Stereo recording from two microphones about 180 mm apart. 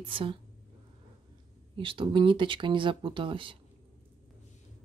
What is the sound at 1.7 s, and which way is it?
A woman's voice, 30° right (ahead or behind).